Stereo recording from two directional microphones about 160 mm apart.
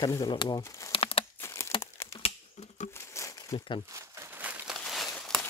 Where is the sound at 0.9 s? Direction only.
35° left (ahead or behind).